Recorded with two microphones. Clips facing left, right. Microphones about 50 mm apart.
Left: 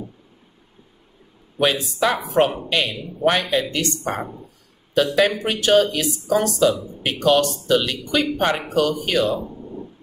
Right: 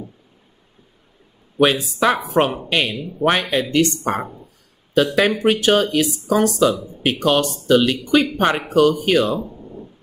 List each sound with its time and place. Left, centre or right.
1.6 s speech: right
4.9 s speech: right